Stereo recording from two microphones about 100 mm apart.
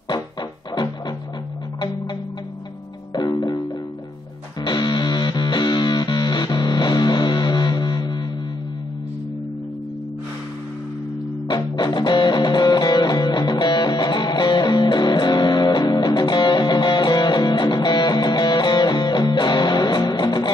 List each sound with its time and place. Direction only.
0.1 s music: 45° left (ahead or behind)
3.1 s music: 45° left (ahead or behind)
11.4 s music: 45° left (ahead or behind)